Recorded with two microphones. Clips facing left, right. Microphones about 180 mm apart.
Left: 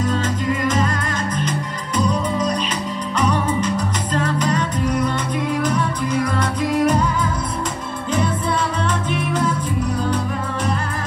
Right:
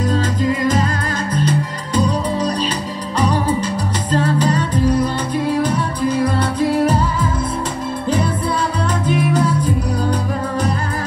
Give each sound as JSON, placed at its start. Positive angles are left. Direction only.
{"t": 0.0, "sound": "music", "side_deg": -35}
{"t": 9.0, "sound": "music", "side_deg": -35}